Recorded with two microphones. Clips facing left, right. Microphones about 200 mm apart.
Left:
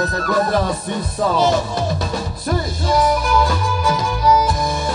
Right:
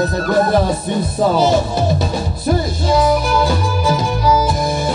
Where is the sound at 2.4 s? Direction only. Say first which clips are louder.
Right 4 dB; 25° right (ahead or behind).